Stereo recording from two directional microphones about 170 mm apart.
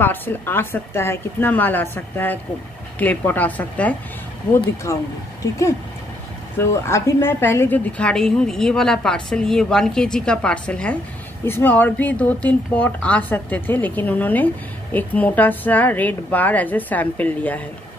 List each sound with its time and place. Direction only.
0.0 s a woman's voice: 10° left (ahead or behind)